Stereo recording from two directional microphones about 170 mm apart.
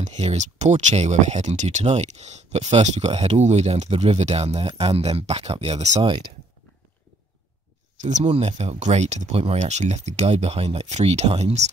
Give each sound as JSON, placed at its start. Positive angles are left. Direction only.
{"t": 0.0, "sound": "speech", "side_deg": -40}
{"t": 8.0, "sound": "speech", "side_deg": -45}